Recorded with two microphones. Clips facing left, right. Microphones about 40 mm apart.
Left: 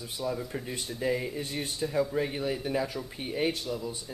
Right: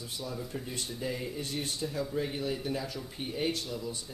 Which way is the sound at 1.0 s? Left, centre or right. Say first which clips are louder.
Left 7 dB; left.